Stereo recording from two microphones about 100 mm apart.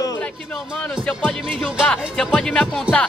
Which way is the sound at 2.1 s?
5° left (ahead or behind).